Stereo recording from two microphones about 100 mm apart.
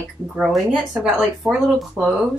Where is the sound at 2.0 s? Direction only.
25° right (ahead or behind).